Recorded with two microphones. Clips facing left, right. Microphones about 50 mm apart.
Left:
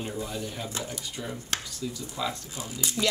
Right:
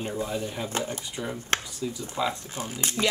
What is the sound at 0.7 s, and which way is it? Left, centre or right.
Speech, right.